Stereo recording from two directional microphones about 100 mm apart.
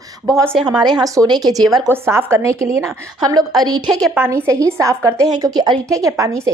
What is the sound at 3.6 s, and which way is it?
Speech, 40° right (ahead or behind).